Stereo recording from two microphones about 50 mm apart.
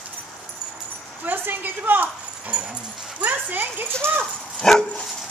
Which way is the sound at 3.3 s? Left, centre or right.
Right.